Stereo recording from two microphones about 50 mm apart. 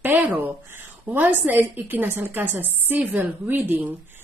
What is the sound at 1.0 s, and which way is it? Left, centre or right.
A woman's voice, right.